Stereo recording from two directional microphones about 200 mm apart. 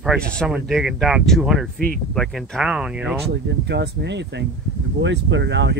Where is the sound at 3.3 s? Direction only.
60° right (ahead or behind).